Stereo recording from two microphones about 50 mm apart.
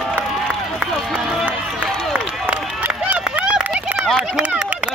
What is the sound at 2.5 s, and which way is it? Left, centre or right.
Run, right.